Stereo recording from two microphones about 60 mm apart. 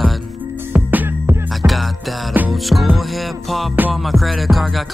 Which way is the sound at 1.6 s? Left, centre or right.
Right.